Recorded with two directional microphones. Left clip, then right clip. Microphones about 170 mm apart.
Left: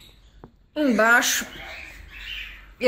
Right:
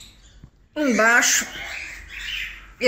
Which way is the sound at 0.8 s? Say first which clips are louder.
Right 1 dB; 15° left (ahead or behind).